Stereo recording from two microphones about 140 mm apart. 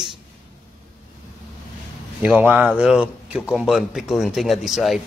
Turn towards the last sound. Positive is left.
turn(degrees=0)  # may be behind; listen again after turning